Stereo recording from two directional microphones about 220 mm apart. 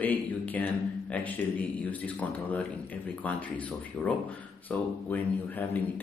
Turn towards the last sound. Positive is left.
turn(degrees=10)  # may be behind; listen again after turning